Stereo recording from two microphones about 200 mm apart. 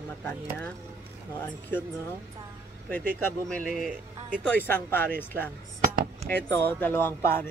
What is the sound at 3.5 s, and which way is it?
Speech, centre (ahead or behind).